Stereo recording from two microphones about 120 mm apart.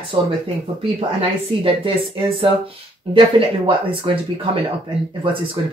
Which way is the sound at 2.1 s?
50° right (ahead or behind).